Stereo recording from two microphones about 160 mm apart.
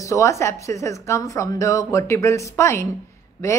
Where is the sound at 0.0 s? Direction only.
20° left (ahead or behind).